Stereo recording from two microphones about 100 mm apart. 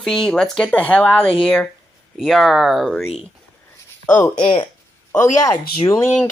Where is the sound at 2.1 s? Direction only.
Centre (ahead or behind).